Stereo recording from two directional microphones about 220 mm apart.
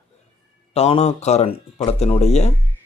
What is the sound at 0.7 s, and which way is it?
Speech, 30° left (ahead or behind).